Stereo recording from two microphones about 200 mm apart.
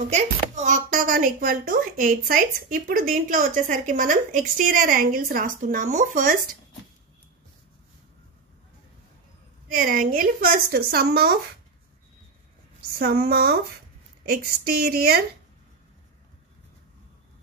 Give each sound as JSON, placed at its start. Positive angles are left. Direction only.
{"t": 0.1, "sound": "speech", "side_deg": -35}
{"t": 9.7, "sound": "speech", "side_deg": -45}
{"t": 12.9, "sound": "speech", "side_deg": -50}